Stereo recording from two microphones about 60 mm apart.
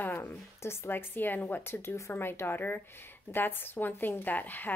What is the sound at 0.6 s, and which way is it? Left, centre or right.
A woman's voice, left.